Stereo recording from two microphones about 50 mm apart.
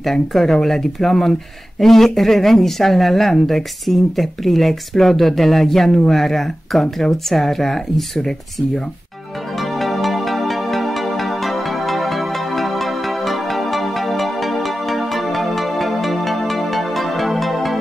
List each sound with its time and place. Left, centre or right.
0.0 s speech: centre
9.6 s music: centre